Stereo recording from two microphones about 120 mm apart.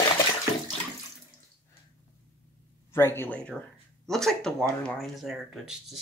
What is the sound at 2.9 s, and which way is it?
Speech, 20° left (ahead or behind).